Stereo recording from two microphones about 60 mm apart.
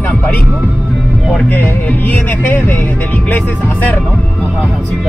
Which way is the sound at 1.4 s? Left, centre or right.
Left.